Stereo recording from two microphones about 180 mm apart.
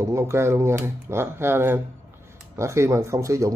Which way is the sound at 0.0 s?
15° right (ahead or behind).